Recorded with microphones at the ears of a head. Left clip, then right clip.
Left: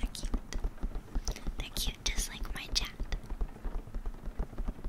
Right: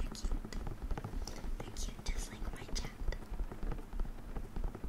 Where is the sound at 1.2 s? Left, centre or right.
Left.